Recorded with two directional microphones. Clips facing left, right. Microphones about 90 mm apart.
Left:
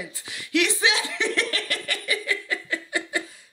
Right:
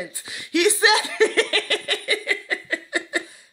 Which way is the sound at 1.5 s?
75° right (ahead or behind).